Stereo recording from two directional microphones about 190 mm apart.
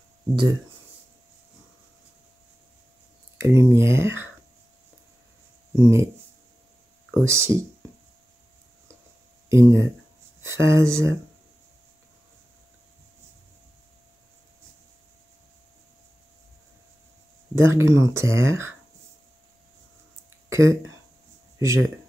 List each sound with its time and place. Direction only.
3.3 s speech: 15° right (ahead or behind)
5.8 s speech: 15° right (ahead or behind)
7.2 s speech: 15° right (ahead or behind)
9.5 s speech: 15° right (ahead or behind)
17.6 s speech: 15° right (ahead or behind)
20.4 s a sound: 15° right (ahead or behind)
21.5 s speech: 15° right (ahead or behind)